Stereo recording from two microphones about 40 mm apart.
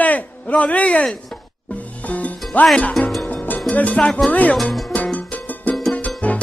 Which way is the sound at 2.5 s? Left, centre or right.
Left.